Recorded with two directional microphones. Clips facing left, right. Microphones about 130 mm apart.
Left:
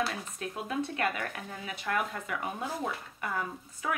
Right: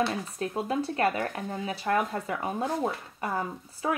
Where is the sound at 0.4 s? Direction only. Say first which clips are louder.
Right 4 dB; 35° right (ahead or behind).